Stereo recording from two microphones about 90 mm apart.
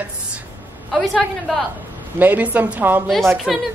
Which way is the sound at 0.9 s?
Centre (ahead or behind).